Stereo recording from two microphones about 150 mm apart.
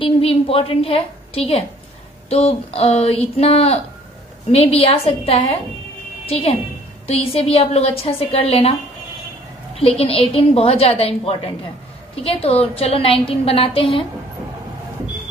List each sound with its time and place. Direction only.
0.0 s a woman's voice: 40° left (ahead or behind)
7.1 s a woman's voice: 40° left (ahead or behind)
9.8 s a woman's voice: 40° left (ahead or behind)